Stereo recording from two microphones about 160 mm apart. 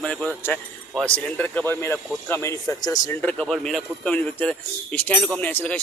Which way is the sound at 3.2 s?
5° left (ahead or behind).